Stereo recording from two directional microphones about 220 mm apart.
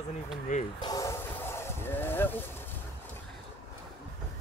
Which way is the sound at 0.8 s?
15° left (ahead or behind).